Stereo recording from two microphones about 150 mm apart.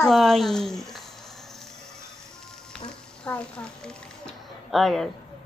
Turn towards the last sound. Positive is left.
turn(degrees=0)  # may be behind; listen again after turning